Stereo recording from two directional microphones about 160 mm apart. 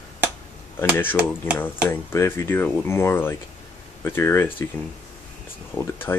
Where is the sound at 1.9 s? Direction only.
15° left (ahead or behind).